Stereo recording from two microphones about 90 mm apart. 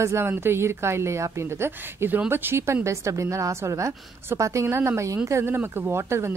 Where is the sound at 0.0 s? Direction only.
30° right (ahead or behind).